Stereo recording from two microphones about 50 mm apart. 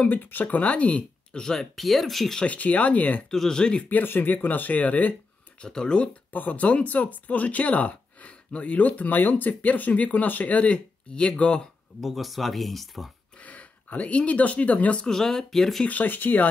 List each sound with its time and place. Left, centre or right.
0.0 s speech: left; by 1.7 s centre
1.8 s speech: centre
2.4 s speech: left
3.3 s speech: centre
3.9 s speech: left
5.6 s speech: centre
6.3 s speech: left
12.0 s speech: centre
13.4 s speech: left
15.0 s speech: centre
15.9 s speech: left